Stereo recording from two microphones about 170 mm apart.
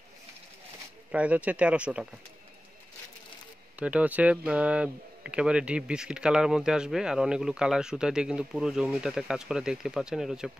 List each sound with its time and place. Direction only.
1.1 s speech: 10° right (ahead or behind)
3.8 s speech: 10° right (ahead or behind)